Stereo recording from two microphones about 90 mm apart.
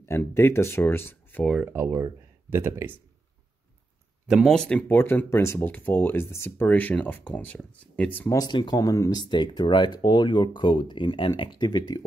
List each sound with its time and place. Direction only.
0.0 s speech: 30° left (ahead or behind)
1.6 s speech: 25° right (ahead or behind)
4.5 s speech: 10° left (ahead or behind); by 5.6 s 30° left (ahead or behind)
5.6 s speech: 20° left (ahead or behind)
8.4 s speech: 55° left (ahead or behind)
8.8 s speech: 40° left (ahead or behind)
9.2 s speech: 55° left (ahead or behind)